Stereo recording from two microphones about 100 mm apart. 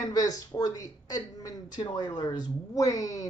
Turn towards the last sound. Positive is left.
turn(degrees=35)  # may be behind; listen again after turning